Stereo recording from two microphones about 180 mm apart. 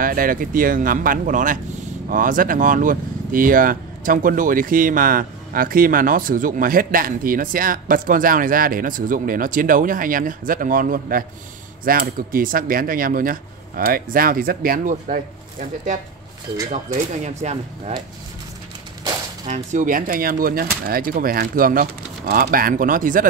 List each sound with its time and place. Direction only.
0.0 s speech: 50° right (ahead or behind)
17.1 s speech: 40° right (ahead or behind)
19.4 s speech: 40° right (ahead or behind)